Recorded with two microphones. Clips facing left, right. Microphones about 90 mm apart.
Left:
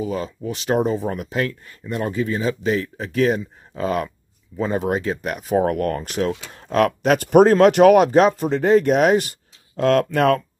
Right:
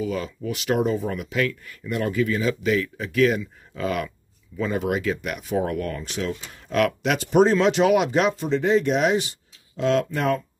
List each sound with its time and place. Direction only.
0.0 s speech: 35° left (ahead or behind); by 10.4 s 70° left (ahead or behind)